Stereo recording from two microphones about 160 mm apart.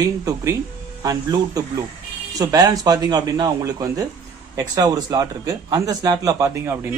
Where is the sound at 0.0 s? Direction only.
20° right (ahead or behind).